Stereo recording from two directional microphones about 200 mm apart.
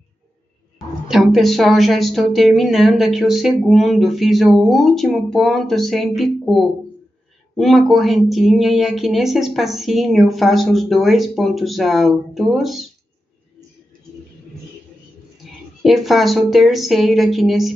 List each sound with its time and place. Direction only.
1.0 s a woman's voice: centre (ahead or behind)
15.4 s a sound: centre (ahead or behind)
15.8 s a woman's voice: centre (ahead or behind)